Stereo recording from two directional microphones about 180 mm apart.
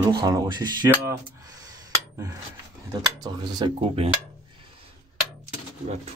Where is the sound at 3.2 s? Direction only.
20° right (ahead or behind).